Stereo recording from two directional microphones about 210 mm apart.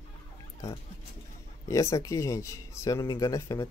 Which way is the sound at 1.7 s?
15° left (ahead or behind).